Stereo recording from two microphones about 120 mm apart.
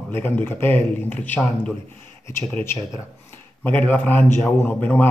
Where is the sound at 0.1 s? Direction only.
15° left (ahead or behind).